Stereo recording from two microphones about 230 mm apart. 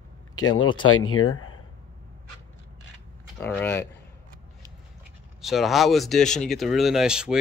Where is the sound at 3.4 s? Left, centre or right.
Centre.